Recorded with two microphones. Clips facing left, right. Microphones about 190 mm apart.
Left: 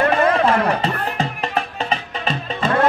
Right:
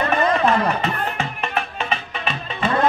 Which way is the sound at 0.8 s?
35° left (ahead or behind).